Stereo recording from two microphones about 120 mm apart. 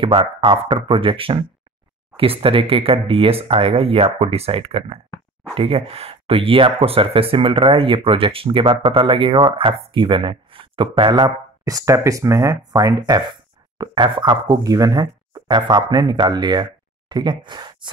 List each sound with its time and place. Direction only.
0.0 s speech: 45° right (ahead or behind)